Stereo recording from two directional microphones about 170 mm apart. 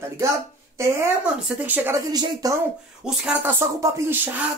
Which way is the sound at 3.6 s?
15° right (ahead or behind).